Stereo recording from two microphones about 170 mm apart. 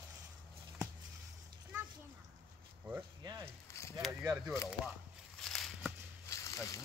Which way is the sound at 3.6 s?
15° left (ahead or behind).